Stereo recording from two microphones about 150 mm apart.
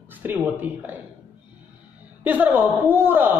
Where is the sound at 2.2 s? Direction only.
10° right (ahead or behind).